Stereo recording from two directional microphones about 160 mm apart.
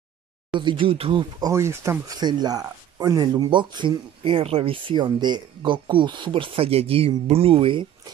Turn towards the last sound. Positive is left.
turn(degrees=-35)  # may be behind; listen again after turning